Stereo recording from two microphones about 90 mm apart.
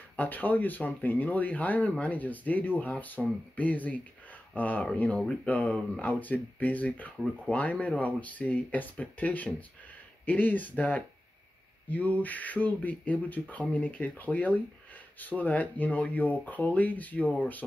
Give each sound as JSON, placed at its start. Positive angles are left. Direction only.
{"t": 0.1, "sound": "speech", "side_deg": 20}